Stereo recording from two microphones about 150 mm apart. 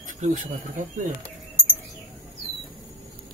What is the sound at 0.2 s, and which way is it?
Speech, 60° right (ahead or behind).